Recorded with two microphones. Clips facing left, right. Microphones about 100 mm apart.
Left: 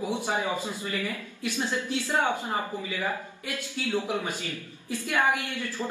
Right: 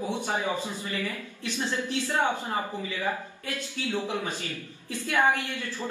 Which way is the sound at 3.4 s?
15° left (ahead or behind).